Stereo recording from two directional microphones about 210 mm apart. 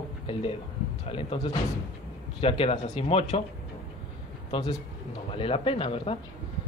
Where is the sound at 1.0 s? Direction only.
25° left (ahead or behind).